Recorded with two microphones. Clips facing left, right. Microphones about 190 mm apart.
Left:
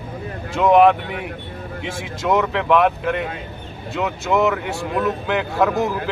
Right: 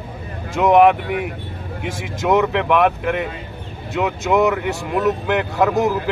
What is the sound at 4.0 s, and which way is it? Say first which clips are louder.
Speech: right 2 dB; 15° right (ahead or behind).